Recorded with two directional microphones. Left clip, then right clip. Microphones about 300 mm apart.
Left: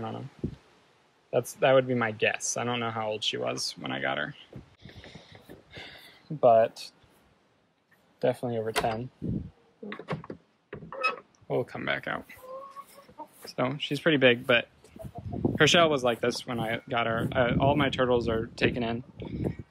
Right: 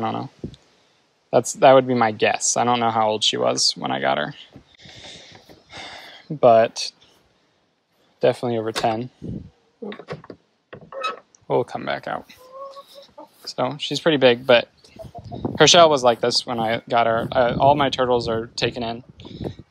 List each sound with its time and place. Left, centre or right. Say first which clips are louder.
1.3 s speech: right 10 dB; centre
5.7 s a sound: right 10 dB; centre
8.2 s speech: right 8 dB; right
11.4 s speech: right 8 dB; centre
13.4 s speech: right 6 dB; centre